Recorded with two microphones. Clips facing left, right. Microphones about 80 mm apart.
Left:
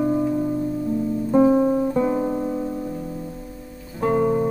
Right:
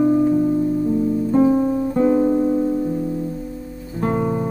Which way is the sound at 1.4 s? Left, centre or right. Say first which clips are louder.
Even; left.